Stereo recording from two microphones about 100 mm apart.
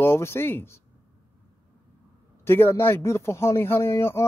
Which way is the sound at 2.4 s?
25° left (ahead or behind).